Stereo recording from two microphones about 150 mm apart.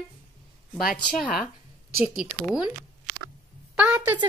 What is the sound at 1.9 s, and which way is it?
A woman's voice, 10° right (ahead or behind).